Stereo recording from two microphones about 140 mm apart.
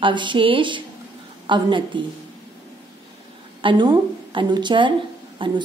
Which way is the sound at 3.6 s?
35° right (ahead or behind).